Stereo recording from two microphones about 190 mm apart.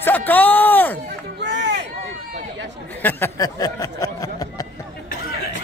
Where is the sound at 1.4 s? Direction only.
65° right (ahead or behind).